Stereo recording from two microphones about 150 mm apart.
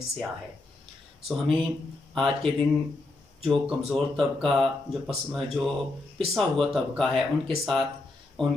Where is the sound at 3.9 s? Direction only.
Centre (ahead or behind).